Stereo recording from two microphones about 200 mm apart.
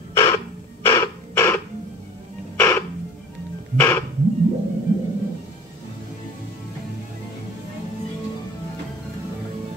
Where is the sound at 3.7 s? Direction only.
10° left (ahead or behind).